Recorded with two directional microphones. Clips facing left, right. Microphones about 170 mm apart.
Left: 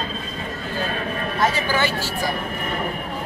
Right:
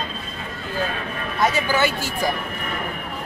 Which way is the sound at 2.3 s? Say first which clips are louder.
Left 2 dB; 35° left (ahead or behind).